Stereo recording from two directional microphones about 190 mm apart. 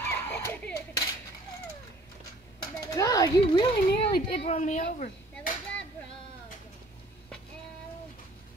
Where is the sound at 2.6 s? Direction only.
20° left (ahead or behind).